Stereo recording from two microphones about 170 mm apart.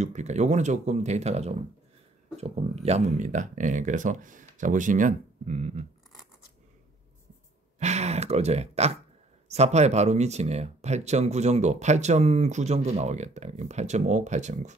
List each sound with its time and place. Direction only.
0.0 s speech: 45° right (ahead or behind)
7.8 s speech: 40° right (ahead or behind)